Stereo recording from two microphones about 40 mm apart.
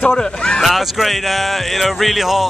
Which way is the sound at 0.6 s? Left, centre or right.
Centre.